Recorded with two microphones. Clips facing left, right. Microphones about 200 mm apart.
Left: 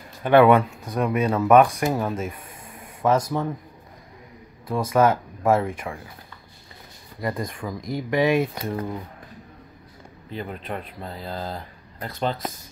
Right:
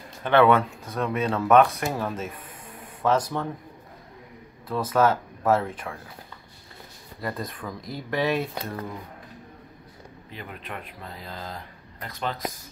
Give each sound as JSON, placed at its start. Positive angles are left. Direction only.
{"t": 0.2, "sound": "speech", "side_deg": 10}
{"t": 4.6, "sound": "speech", "side_deg": 10}
{"t": 7.2, "sound": "speech", "side_deg": 10}
{"t": 10.3, "sound": "speech", "side_deg": 35}